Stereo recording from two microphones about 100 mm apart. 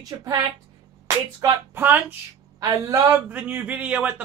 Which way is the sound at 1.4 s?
35° right (ahead or behind).